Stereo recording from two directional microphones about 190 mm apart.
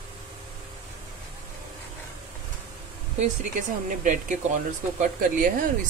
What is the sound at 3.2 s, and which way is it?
Speech, 40° right (ahead or behind).